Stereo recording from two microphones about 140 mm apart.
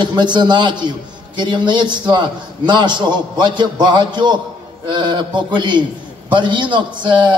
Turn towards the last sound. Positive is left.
turn(degrees=-35)  # may be behind; listen again after turning